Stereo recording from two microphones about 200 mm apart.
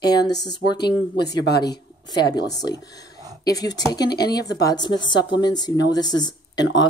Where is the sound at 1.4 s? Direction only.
55° left (ahead or behind).